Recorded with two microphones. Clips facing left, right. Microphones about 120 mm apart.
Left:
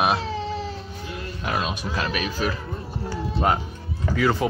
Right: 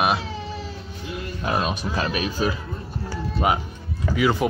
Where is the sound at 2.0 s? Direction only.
30° right (ahead or behind).